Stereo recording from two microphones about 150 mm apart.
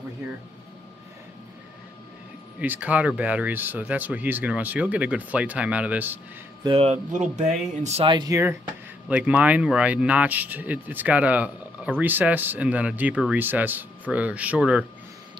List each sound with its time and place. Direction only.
2.6 s speech: 10° right (ahead or behind)
6.6 s speech: 40° right (ahead or behind)
7.1 s speech: 50° right (ahead or behind)
8.0 s speech: 30° right (ahead or behind)
9.1 s speech: 10° right (ahead or behind)